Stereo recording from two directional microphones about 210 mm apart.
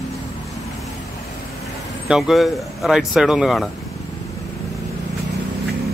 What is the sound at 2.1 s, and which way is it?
Speech, centre (ahead or behind).